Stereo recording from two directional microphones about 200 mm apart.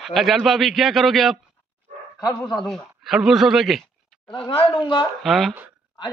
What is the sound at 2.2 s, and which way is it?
Speech, 20° left (ahead or behind).